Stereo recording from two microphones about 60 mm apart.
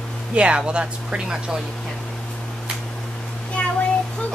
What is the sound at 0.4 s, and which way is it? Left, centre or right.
Speech, centre.